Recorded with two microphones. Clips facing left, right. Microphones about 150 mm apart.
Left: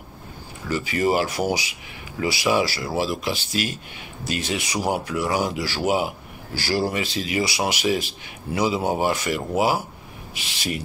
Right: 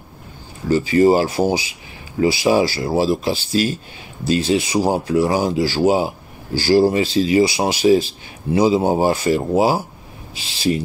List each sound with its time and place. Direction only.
0.7 s speech: 30° right (ahead or behind)